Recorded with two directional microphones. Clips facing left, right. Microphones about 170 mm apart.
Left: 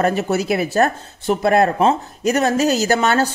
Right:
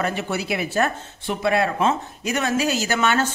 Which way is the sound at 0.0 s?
40° left (ahead or behind).